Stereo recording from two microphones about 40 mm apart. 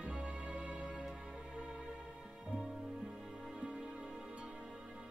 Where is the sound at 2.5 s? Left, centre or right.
Centre.